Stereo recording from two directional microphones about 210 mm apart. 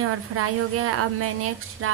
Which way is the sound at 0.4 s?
90° right.